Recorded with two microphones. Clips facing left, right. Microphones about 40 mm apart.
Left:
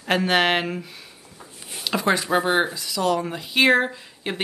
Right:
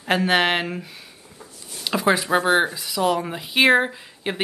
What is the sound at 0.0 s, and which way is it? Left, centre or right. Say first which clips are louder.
Speech: right 1 dB; centre.